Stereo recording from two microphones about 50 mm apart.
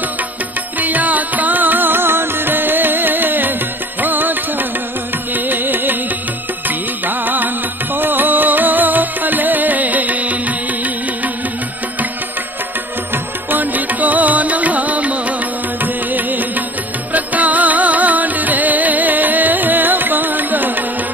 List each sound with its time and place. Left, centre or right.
0.7 s music: right
7.1 s music: right
13.1 s music: right